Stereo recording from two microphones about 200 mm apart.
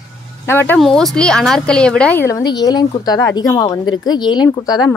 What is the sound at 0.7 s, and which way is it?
A woman's voice, centre (ahead or behind).